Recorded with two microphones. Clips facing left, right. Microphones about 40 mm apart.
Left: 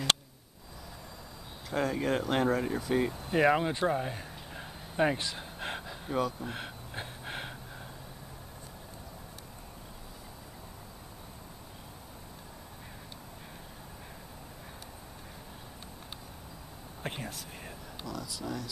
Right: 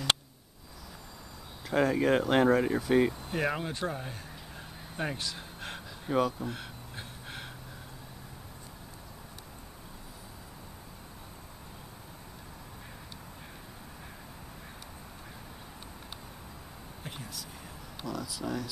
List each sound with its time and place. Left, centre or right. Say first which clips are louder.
1.7 s speech: right 4 dB; centre
3.3 s speech: left 6 dB; centre
5.4 s a sound: left 3 dB; centre
6.0 s speech: right 3 dB; centre
6.4 s a sound: right 1 dB; left
17.0 s speech: left 5 dB; left
18.0 s speech: right 3 dB; centre